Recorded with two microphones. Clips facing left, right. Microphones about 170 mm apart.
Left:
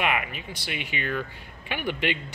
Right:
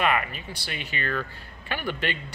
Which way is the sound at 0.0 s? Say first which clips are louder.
Right 2 dB; 15° left (ahead or behind).